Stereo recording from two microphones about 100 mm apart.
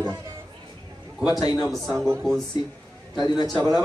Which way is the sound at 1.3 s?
40° left (ahead or behind).